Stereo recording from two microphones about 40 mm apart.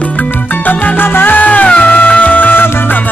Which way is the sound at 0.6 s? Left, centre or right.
Left.